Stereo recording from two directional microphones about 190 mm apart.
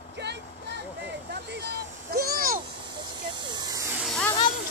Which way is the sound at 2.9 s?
20° right (ahead or behind).